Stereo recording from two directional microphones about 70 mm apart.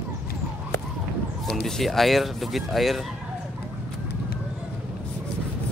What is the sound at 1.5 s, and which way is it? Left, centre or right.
Speech, centre.